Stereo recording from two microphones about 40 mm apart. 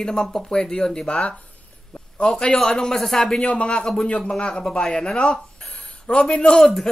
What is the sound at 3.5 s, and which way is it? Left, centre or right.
Speech, left.